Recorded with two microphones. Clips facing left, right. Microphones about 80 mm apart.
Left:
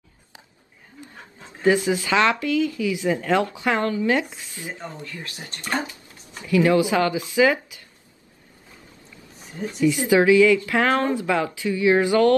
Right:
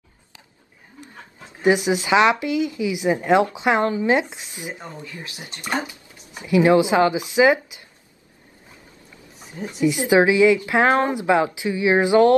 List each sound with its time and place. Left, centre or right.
1.6 s speech: centre
9.8 s speech: right